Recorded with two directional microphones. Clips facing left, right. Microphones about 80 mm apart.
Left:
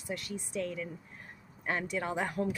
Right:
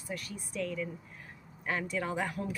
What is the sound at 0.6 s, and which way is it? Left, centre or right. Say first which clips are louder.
Speech: right 1 dB; left.